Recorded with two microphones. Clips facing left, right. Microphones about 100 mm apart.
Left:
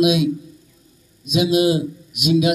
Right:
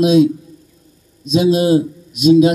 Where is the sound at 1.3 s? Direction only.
35° right (ahead or behind).